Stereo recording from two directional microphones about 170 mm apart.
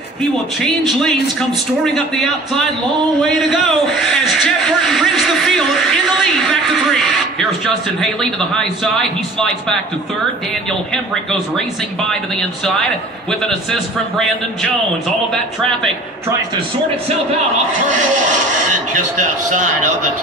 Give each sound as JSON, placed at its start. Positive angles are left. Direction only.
{"t": 3.2, "sound": "a sound", "side_deg": 0}
{"t": 12.1, "sound": "a man's voice", "side_deg": 0}
{"t": 19.1, "sound": "a man's voice", "side_deg": -45}